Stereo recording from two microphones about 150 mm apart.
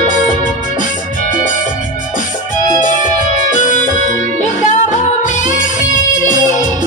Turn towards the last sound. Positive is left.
turn(degrees=60)  # may be behind; listen again after turning